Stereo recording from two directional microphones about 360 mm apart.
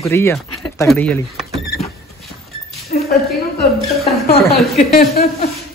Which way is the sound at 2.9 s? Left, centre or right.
Left.